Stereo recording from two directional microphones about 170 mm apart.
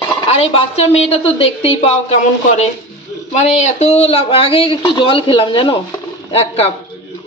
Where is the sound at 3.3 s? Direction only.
40° left (ahead or behind).